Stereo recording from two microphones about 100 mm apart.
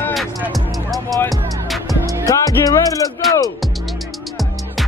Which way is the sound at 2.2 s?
35° left (ahead or behind).